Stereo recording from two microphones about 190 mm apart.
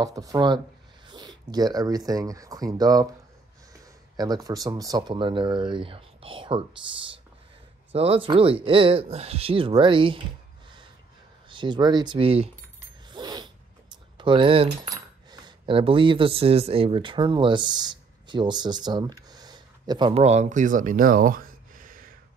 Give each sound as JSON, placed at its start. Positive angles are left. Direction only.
{"t": 0.0, "sound": "speech", "side_deg": -20}
{"t": 4.2, "sound": "speech", "side_deg": -20}
{"t": 11.4, "sound": "speech", "side_deg": -25}
{"t": 13.1, "sound": "a sound", "side_deg": -20}
{"t": 14.1, "sound": "speech", "side_deg": -25}